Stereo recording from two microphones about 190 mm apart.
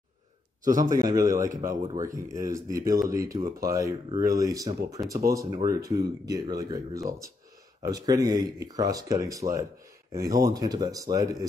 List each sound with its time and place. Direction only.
0.7 s speech: 20° right (ahead or behind)